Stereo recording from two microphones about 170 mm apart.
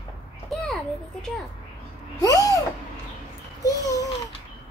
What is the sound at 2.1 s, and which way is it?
Owl, 20° left (ahead or behind).